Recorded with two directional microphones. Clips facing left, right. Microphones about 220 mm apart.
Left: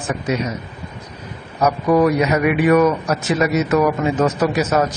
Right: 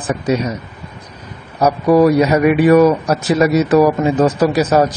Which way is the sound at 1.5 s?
30° right (ahead or behind).